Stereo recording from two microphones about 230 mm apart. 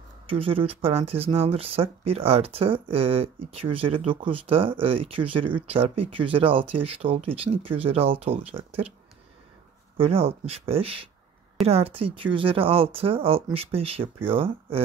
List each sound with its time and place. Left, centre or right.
0.3 s speech: right
9.9 s speech: right